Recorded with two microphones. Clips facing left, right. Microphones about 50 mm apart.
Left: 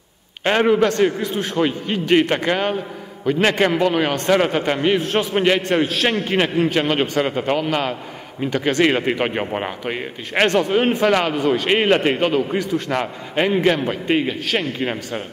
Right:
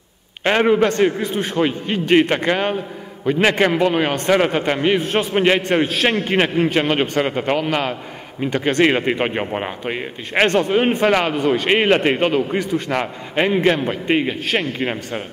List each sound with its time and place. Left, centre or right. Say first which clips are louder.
0.4 s a man's voice: right 1 dB; centre
0.7 s a man's voice: even; right
1.3 s a man's voice: right 1 dB; centre
4.3 s a man's voice: right 1 dB; centre
5.9 s a man's voice: right 1 dB; right
6.3 s a man's voice: even; centre
7.0 s a man's voice: right 1 dB; centre
7.5 s a man's voice: right 1 dB; right
8.5 s a man's voice: right 1 dB; centre
11.4 s a man's voice: right 1 dB; right
11.9 s a man's voice: even; centre
12.2 s a man's voice: right 1 dB; right
12.9 s a man's voice: right 1 dB; centre